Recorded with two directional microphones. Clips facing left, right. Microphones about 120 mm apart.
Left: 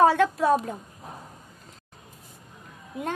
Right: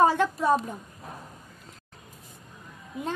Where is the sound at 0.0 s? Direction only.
75° left (ahead or behind).